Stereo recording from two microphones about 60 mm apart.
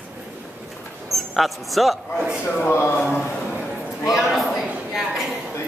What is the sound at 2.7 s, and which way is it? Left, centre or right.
Speech, left.